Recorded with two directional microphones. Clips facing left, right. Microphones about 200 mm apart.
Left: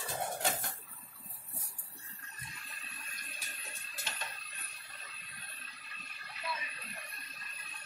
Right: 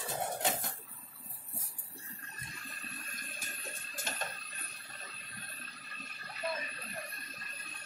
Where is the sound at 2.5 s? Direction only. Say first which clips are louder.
Right 5 dB; 45° right (ahead or behind).